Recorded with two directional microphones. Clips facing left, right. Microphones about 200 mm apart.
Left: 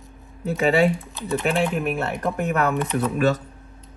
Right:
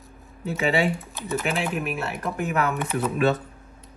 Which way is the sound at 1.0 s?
Centre (ahead or behind).